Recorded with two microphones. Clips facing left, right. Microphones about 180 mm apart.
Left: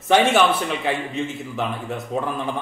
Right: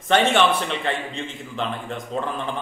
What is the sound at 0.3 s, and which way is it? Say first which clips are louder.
A man's voice: left 1 dB; 5° left (ahead or behind).